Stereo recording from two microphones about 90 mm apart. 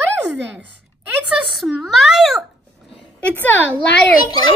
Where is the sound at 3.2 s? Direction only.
15° left (ahead or behind).